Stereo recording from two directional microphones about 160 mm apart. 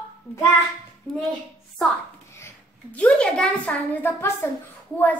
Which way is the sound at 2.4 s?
10° left (ahead or behind).